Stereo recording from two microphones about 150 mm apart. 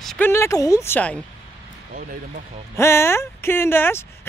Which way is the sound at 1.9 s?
65° right (ahead or behind).